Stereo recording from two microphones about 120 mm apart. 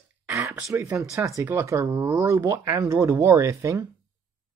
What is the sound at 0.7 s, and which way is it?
Speech, 15° right (ahead or behind).